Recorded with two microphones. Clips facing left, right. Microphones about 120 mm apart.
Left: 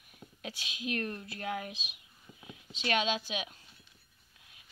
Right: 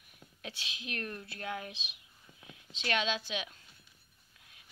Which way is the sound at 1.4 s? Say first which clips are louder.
Left 3 dB; 25° left (ahead or behind).